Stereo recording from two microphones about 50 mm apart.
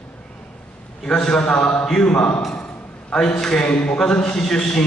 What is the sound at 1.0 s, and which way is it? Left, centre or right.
A man's voice, centre.